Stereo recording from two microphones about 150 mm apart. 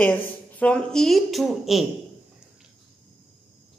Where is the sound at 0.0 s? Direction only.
10° left (ahead or behind).